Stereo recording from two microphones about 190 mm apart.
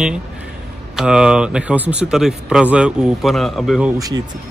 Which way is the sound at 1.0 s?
5° right (ahead or behind).